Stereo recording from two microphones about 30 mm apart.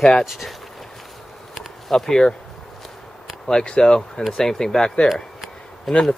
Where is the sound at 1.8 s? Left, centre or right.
Centre.